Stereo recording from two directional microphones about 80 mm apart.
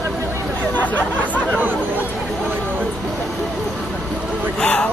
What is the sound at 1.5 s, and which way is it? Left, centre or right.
Chatter, right.